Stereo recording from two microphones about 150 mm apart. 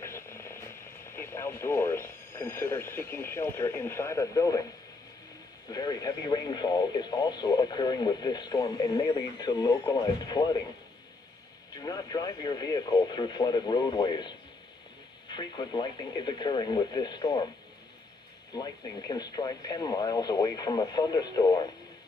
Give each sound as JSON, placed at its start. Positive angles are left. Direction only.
{"t": 0.0, "sound": "speech", "side_deg": 15}
{"t": 5.7, "sound": "speech", "side_deg": 25}
{"t": 11.7, "sound": "speech", "side_deg": 25}
{"t": 18.5, "sound": "speech", "side_deg": 25}